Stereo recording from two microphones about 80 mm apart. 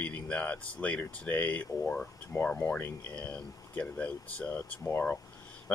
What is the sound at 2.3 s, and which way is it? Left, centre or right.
Speech, left.